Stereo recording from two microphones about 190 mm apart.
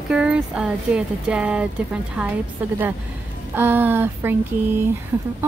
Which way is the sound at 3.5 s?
10° right (ahead or behind).